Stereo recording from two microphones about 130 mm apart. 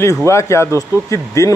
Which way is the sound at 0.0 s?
20° left (ahead or behind).